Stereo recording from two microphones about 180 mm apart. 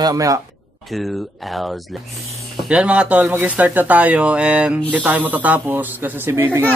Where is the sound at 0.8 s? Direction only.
Centre (ahead or behind).